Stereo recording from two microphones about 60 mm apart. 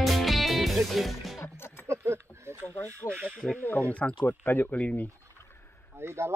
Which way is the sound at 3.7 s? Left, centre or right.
Left.